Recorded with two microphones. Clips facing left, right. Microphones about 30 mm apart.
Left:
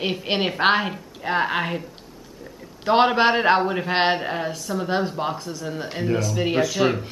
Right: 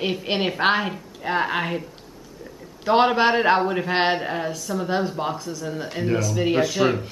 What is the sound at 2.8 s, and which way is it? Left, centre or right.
Speech, centre.